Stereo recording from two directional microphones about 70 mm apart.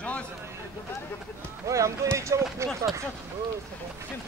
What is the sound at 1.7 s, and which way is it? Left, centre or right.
Speech, right.